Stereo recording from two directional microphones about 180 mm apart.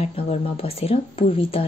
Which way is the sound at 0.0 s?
35° left (ahead or behind).